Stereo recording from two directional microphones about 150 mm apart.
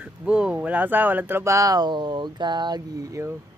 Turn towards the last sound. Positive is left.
turn(degrees=-25)  # may be behind; listen again after turning